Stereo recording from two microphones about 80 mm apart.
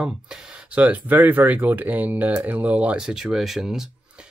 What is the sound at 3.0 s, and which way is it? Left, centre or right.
Speech, centre.